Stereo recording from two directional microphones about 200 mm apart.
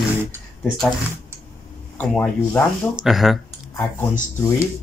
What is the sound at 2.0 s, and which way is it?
Speech, 10° left (ahead or behind).